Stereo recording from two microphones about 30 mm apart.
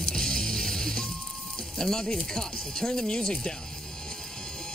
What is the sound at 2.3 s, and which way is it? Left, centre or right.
Speech, left.